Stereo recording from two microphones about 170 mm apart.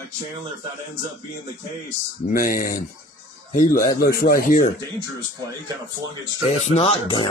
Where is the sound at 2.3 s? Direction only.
55° left (ahead or behind).